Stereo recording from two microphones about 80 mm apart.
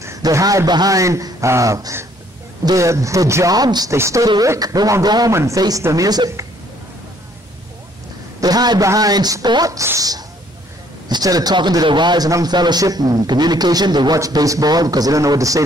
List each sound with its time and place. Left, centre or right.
0.2 s a man's voice: right
0.9 s speech: right
3.5 s speech: right
3.9 s speech: right
4.4 s a man's voice: right
5.3 s a man's voice: right
8.4 s a sound: right
8.8 s a man's voice: right
9.8 s a man's voice: right
11.8 s a man's voice: right
12.3 s a man's voice: right
12.5 s a man's voice: right